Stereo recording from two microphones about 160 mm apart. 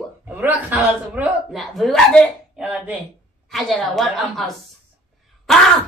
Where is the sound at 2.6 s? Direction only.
10° right (ahead or behind).